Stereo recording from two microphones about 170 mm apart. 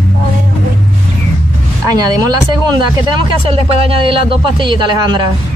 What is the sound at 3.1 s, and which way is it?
Speech, 35° right (ahead or behind).